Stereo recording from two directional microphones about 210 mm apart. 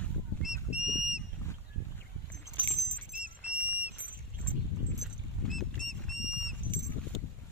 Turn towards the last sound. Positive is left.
turn(degrees=0)  # may be behind; listen again after turning